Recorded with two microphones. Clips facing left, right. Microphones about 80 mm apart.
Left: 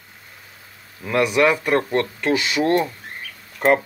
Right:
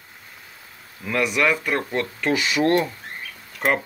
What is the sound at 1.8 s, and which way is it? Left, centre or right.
Speech, centre.